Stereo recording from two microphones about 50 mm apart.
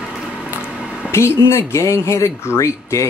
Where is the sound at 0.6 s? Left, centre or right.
Right.